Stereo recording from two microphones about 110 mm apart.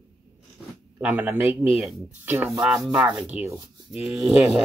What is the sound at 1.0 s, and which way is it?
Speech, 15° right (ahead or behind).